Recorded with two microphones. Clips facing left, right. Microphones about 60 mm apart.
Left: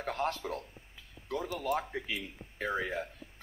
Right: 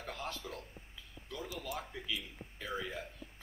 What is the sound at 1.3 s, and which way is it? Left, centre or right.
Speech, left.